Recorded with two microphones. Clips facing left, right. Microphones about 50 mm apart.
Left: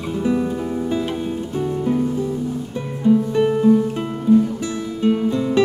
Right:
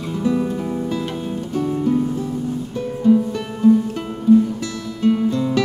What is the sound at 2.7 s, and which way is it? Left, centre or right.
Music, centre.